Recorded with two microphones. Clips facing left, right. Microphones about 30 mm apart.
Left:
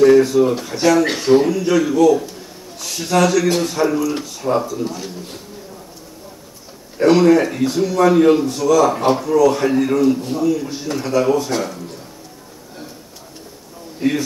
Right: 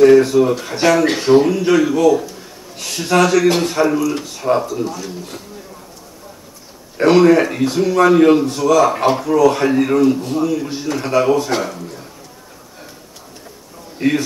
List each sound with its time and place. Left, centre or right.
0.0 s a man's voice: centre
0.7 s speech: right
1.0 s a man's voice: centre; by 3.8 s right
3.8 s a man's voice: centre
4.2 s speech: centre
4.8 s speech: centre
7.0 s a man's voice: centre
13.9 s speech: right